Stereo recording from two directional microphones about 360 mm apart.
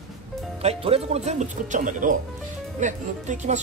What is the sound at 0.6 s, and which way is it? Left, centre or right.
Speech, centre.